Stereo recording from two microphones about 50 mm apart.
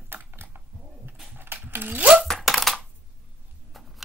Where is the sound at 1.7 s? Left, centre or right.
Right.